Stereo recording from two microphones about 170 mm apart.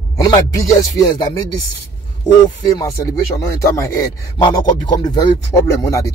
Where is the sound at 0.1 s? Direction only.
20° left (ahead or behind).